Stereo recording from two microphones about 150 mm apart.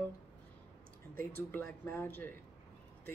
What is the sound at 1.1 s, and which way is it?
Speech, 15° left (ahead or behind).